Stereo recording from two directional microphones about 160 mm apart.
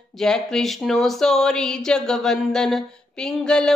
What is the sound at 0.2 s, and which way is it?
Speech, 5° left (ahead or behind).